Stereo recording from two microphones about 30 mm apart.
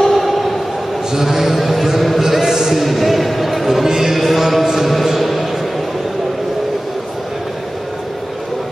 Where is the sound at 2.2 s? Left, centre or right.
Centre.